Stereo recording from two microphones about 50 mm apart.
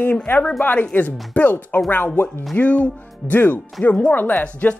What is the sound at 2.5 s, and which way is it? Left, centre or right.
Speech, left.